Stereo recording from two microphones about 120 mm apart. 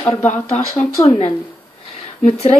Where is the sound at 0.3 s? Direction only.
65° left (ahead or behind).